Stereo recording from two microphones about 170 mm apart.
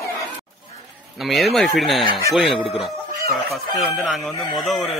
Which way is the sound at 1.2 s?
Centre (ahead or behind).